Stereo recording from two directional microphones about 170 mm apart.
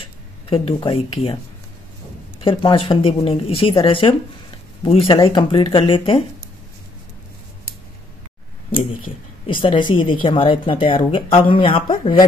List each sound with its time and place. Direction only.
0.0 s speech: 30° left (ahead or behind)
2.4 s speech: 30° left (ahead or behind)
9.5 s speech: 30° left (ahead or behind)